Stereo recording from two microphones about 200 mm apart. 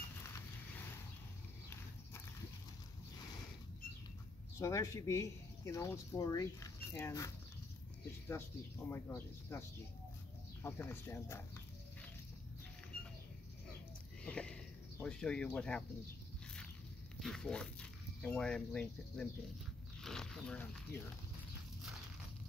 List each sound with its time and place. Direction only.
4.6 s speech: 15° left (ahead or behind)
10.6 s speech: 10° left (ahead or behind)
14.2 s a sound: 5° left (ahead or behind)
17.2 s speech: 5° left (ahead or behind)
20.0 s zipper: centre (ahead or behind)